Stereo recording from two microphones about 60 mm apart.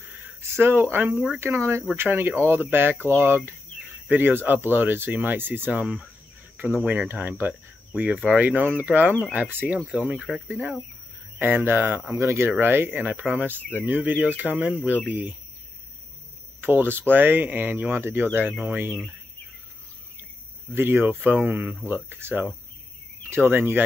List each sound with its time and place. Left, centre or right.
0.6 s speech: right
2.0 s speech: right
5.7 s speech: right
6.5 s speech: right
10.1 s speech: centre
11.3 s speech: right
12.2 s speech: right
12.4 s speech: right
13.3 s speech: right
13.6 s speech: left
13.8 s speech: right
16.6 s speech: right
20.7 s speech: right